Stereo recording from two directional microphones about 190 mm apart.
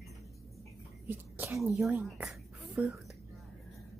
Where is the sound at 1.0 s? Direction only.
10° right (ahead or behind).